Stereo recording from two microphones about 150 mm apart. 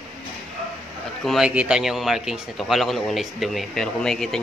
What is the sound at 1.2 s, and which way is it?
Speech, 5° right (ahead or behind).